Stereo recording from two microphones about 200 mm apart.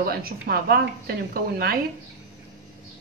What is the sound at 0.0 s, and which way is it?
A woman's voice, 50° right (ahead or behind).